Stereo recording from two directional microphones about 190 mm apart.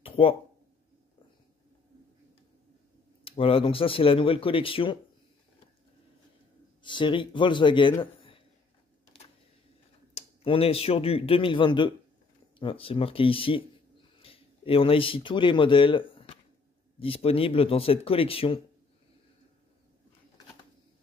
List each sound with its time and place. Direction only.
0.0 s a sound: 30° left (ahead or behind)
3.3 s speech: 30° left (ahead or behind)
6.8 s a man's voice: 25° left (ahead or behind)
10.1 s speech: 30° left (ahead or behind)